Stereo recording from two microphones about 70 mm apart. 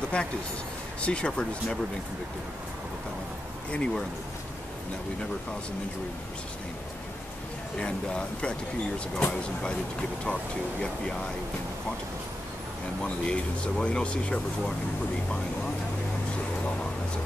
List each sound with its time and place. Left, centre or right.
0.1 s speech: centre
3.7 s speech: centre
7.7 s speech: centre
13.0 s speech: centre